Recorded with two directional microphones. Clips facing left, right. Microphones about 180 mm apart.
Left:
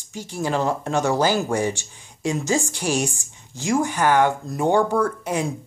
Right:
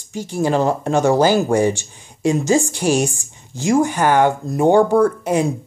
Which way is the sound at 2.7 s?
55° right (ahead or behind).